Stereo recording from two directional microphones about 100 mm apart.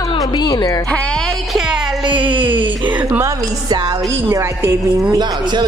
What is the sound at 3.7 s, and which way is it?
Speech, 50° right (ahead or behind).